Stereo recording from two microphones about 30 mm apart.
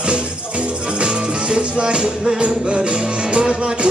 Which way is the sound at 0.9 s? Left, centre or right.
Right.